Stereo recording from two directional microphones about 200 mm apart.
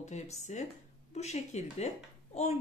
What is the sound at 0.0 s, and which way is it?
Speech, 35° left (ahead or behind).